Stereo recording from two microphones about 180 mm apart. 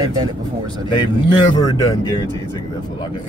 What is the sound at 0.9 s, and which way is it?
Speech, 25° left (ahead or behind).